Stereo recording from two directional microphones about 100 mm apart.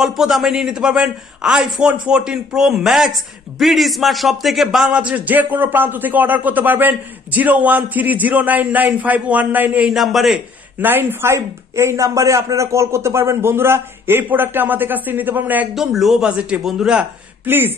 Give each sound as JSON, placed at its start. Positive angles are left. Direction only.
{"t": 0.0, "sound": "a man's voice", "side_deg": -5}
{"t": 9.9, "sound": "a man's voice", "side_deg": 0}
{"t": 10.8, "sound": "speech", "side_deg": -20}
{"t": 15.7, "sound": "a man's voice", "side_deg": 0}
{"t": 17.5, "sound": "speech", "side_deg": -20}